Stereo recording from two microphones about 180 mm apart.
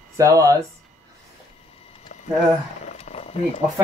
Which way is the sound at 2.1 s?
45° left (ahead or behind).